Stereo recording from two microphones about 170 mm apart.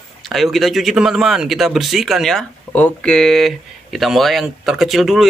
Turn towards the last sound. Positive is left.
turn(degrees=0)  # may be behind; listen again after turning